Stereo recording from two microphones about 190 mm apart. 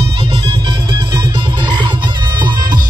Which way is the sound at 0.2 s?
25° right (ahead or behind).